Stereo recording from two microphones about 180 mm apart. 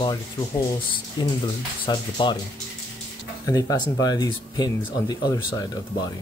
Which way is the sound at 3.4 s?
20° left (ahead or behind).